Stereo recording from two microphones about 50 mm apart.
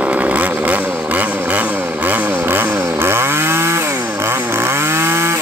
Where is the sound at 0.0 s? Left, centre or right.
Right.